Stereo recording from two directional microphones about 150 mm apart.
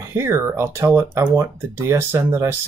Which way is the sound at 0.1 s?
15° right (ahead or behind).